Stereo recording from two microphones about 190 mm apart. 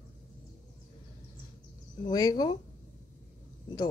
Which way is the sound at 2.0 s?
20° left (ahead or behind).